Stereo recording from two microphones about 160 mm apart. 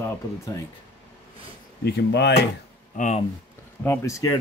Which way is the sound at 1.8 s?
90° left.